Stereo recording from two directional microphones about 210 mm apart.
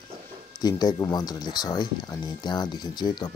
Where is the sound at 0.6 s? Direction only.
20° left (ahead or behind).